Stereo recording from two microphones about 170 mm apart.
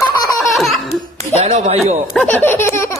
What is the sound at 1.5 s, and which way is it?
Speech, 40° right (ahead or behind).